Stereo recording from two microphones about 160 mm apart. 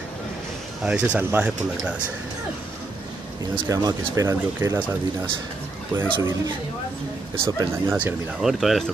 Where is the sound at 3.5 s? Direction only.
25° right (ahead or behind).